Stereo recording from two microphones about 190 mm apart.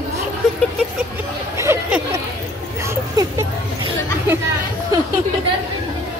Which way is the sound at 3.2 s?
20° right (ahead or behind).